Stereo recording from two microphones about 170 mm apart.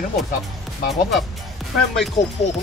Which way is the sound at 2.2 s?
50° left (ahead or behind).